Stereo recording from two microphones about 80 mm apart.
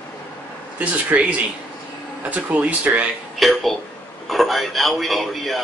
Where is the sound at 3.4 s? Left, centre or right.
Centre.